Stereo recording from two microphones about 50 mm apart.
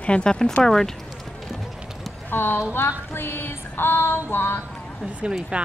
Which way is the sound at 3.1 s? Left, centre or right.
Left.